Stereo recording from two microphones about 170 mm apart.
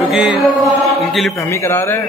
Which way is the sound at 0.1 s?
Centre (ahead or behind).